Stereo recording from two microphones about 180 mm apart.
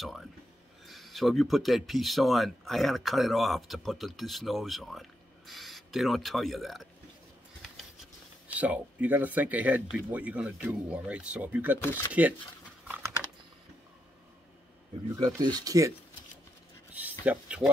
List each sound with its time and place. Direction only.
0.8 s speech: centre (ahead or behind)
8.5 s speech: 10° right (ahead or behind)
11.8 s speech: 15° left (ahead or behind)
12.1 s speech: 10° right (ahead or behind)
12.8 s typing: 10° right (ahead or behind)
15.1 s speech: 20° right (ahead or behind)
17.2 s speech: 5° right (ahead or behind)